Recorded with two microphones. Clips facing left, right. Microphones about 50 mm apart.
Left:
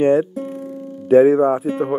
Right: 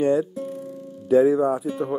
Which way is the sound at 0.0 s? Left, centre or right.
Left.